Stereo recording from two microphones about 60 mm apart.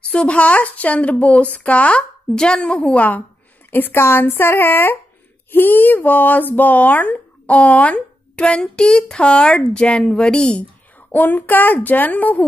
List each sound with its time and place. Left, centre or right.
0.1 s speech: left
3.7 s speech: left; by 10.6 s centre
11.1 s speech: left